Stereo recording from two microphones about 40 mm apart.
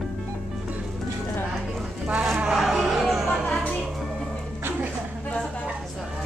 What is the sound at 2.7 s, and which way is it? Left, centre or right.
Music, centre.